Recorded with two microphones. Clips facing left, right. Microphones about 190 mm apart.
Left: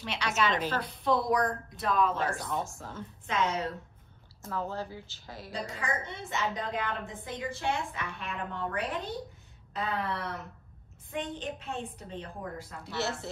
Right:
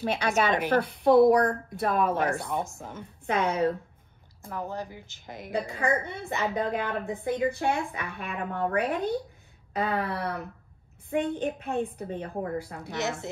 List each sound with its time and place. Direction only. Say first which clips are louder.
0.0 s a woman's voice: right 5 dB; 50° right (ahead or behind)
2.4 s speech: right 3 dB; 15° right (ahead or behind)
3.3 s a woman's voice: right 6 dB; 55° right (ahead or behind)
4.5 s speech: right 1 dB; 15° right (ahead or behind)
5.7 s a woman's voice: right 8 dB; 60° right (ahead or behind)